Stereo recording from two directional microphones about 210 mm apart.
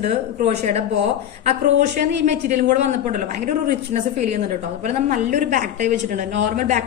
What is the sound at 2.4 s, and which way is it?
A man's voice, 35° right (ahead or behind).